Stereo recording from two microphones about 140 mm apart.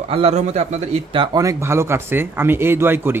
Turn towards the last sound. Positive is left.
turn(degrees=-15)  # may be behind; listen again after turning